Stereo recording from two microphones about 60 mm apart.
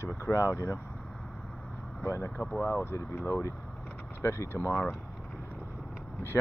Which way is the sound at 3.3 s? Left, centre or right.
Left.